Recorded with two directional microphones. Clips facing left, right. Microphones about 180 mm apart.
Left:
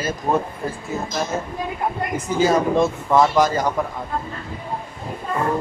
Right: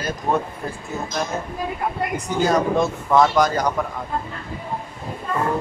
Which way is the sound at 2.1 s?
Centre (ahead or behind).